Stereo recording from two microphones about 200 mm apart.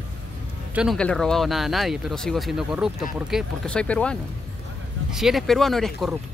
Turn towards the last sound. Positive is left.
turn(degrees=0)  # may be behind; listen again after turning